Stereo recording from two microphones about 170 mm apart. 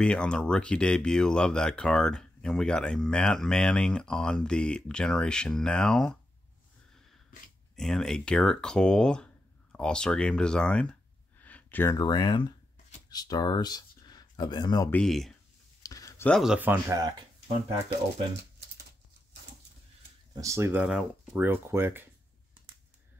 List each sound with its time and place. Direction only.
0.0 s speech: 5° left (ahead or behind)
7.7 s speech: centre (ahead or behind); by 14.9 s 25° left (ahead or behind)
14.9 s speech: 5° left (ahead or behind)
15.8 s a sound: 20° left (ahead or behind)
16.3 s speech: centre (ahead or behind)
16.5 s speech: 10° right (ahead or behind)
20.3 s speech: 15° right (ahead or behind)